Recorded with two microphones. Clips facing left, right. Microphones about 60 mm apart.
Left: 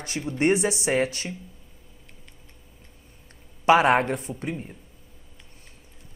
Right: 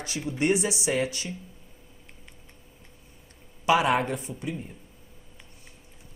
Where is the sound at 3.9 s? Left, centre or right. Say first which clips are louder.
Left 4 dB; left.